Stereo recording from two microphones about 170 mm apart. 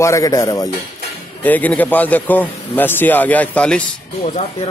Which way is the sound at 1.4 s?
10° left (ahead or behind).